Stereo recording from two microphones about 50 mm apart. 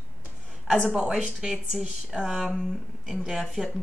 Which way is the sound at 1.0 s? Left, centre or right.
Centre.